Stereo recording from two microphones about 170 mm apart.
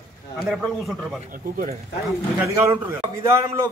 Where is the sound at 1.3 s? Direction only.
55° right (ahead or behind).